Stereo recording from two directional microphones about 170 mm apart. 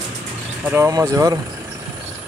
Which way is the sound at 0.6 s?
15° right (ahead or behind).